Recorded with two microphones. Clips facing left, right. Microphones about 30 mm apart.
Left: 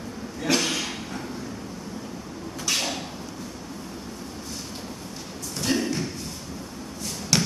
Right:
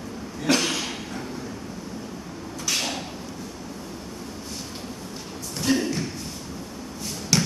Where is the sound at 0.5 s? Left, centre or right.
Centre.